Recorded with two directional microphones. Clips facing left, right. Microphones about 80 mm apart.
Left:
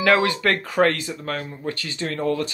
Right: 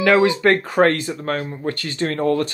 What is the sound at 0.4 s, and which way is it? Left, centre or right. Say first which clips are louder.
Speech: right 4 dB; right.